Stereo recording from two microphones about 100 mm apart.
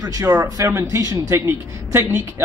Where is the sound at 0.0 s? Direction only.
35° right (ahead or behind).